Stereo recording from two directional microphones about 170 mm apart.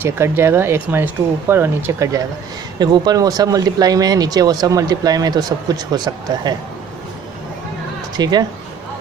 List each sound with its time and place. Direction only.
0.0 s speech: 15° right (ahead or behind)
8.2 s speech: 25° right (ahead or behind)